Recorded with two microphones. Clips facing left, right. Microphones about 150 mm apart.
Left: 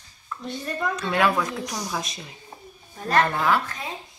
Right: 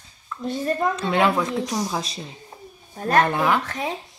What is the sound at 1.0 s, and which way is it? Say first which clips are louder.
Speech: left 2 dB; 25° right (ahead or behind).